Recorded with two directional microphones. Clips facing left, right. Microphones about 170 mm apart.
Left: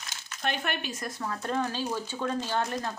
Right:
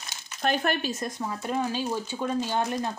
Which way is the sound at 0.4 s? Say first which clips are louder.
Right 6 dB; 40° right (ahead or behind).